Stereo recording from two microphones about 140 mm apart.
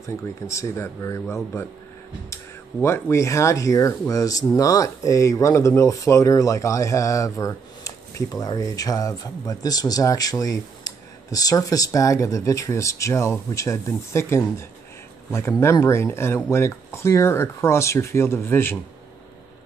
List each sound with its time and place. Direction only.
0.0 s speech: 20° left (ahead or behind)